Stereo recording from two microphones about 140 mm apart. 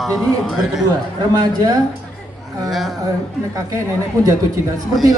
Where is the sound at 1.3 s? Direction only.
30° right (ahead or behind).